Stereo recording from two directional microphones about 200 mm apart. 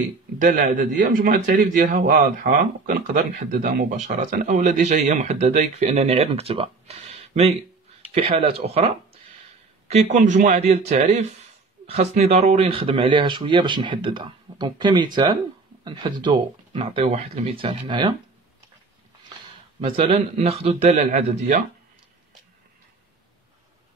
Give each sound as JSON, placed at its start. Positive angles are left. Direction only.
{"t": 0.4, "sound": "a man's voice", "side_deg": -40}
{"t": 19.8, "sound": "a man's voice", "side_deg": -35}